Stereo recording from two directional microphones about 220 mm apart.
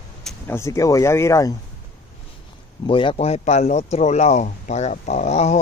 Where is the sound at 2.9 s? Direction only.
25° left (ahead or behind).